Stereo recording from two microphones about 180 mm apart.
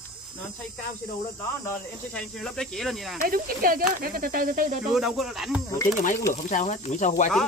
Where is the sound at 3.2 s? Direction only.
50° right (ahead or behind).